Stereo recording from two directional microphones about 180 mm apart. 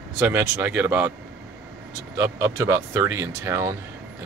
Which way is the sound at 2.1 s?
15° right (ahead or behind).